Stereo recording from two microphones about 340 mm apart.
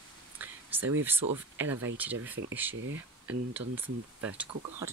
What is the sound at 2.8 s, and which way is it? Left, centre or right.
Speech, right.